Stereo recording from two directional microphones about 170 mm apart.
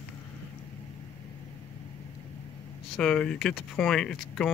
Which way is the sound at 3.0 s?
5° left (ahead or behind).